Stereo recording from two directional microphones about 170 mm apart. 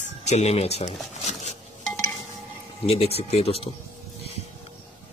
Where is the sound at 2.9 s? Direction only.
35° left (ahead or behind).